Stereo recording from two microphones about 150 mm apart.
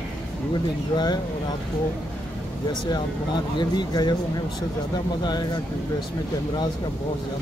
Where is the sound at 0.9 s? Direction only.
30° left (ahead or behind).